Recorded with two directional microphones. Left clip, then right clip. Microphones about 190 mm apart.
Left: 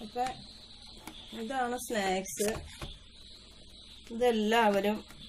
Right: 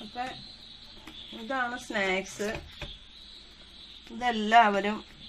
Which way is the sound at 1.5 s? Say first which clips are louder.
Right 2 dB; 15° right (ahead or behind).